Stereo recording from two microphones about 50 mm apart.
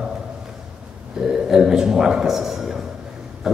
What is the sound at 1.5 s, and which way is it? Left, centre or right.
A man's voice, centre.